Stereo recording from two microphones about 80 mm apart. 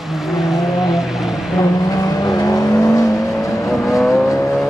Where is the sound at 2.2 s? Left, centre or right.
Left.